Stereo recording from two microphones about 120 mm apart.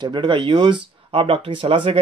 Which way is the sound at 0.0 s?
40° right (ahead or behind).